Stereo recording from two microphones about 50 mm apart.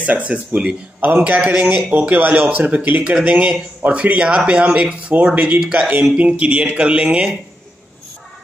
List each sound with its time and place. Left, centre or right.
0.0 s speech: right
1.4 s speech: centre
2.0 s speech: right